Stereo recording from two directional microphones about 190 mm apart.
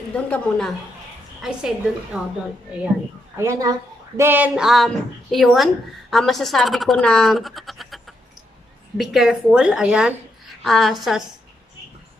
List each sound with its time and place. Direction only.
0.1 s a woman's voice: 5° left (ahead or behind)
3.3 s a woman's voice: 15° right (ahead or behind)